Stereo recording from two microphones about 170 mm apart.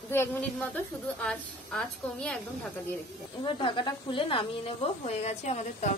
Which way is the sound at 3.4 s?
30° left (ahead or behind).